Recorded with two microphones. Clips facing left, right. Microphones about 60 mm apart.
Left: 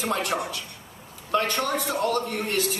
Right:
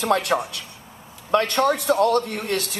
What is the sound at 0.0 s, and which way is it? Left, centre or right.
A man's voice, right.